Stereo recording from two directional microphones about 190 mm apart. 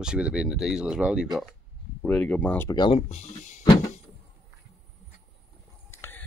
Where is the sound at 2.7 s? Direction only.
25° left (ahead or behind).